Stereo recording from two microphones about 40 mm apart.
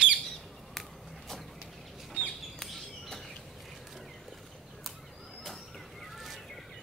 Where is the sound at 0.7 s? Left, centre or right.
Centre.